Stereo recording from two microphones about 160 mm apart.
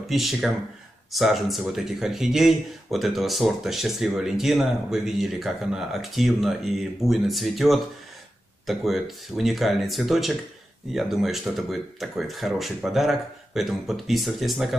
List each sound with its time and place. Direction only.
0.0 s speech: centre (ahead or behind)